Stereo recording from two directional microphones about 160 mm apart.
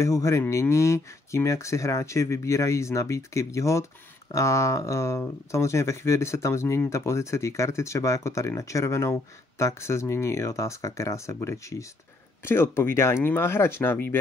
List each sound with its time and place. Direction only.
0.0 s speech: 20° left (ahead or behind)